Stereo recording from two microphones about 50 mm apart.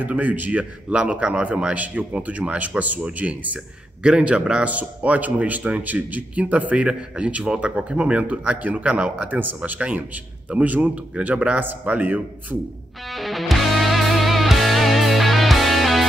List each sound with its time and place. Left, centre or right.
0.0 s speech: right
1.2 s speech: right
9.2 s speech: right
9.6 s speech: right
13.0 s music: centre